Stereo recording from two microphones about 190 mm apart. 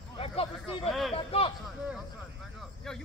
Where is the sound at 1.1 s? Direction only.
30° left (ahead or behind).